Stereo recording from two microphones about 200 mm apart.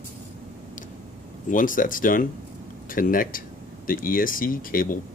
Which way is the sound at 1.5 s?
40° left (ahead or behind).